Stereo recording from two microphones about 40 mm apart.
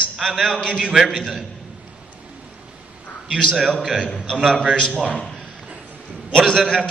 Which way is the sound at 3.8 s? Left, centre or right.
Right.